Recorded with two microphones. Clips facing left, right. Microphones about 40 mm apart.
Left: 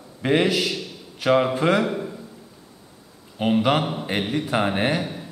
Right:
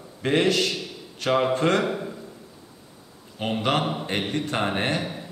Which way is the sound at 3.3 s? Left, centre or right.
Centre.